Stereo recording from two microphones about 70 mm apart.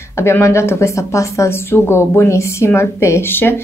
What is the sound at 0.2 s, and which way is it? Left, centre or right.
Speech, left.